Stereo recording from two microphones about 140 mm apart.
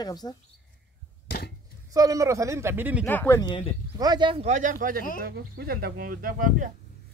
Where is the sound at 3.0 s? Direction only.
15° left (ahead or behind).